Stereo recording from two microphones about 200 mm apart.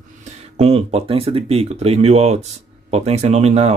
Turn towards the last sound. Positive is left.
turn(degrees=-30)  # may be behind; listen again after turning